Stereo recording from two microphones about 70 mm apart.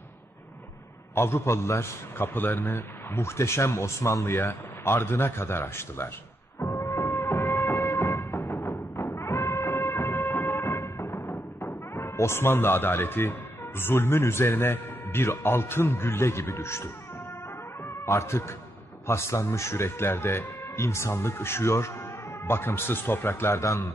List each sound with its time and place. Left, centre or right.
1.1 s a man's voice: left
6.6 s music: left
8.5 s music: left
11.1 s speech: left
18.0 s a man's voice: left